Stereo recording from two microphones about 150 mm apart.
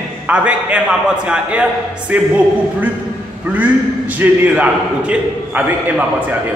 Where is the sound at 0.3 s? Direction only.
10° right (ahead or behind).